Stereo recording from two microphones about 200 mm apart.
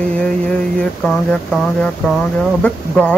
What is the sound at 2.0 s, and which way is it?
A man's voice, centre (ahead or behind).